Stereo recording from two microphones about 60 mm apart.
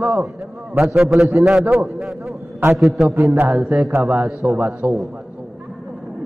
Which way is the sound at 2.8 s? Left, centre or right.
Centre.